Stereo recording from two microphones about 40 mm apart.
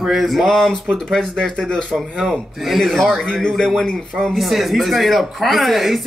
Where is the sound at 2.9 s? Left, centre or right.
Centre.